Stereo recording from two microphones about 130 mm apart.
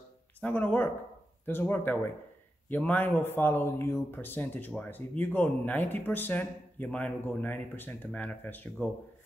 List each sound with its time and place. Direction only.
0.4 s a man's voice: 15° left (ahead or behind)